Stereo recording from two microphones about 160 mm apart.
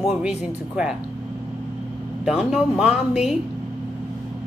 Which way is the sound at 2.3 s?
5° right (ahead or behind).